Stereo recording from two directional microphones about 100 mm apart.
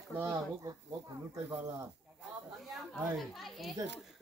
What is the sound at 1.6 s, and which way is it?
Speech, 35° right (ahead or behind).